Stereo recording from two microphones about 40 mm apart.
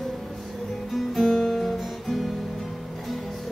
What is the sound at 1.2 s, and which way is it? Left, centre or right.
Music, centre.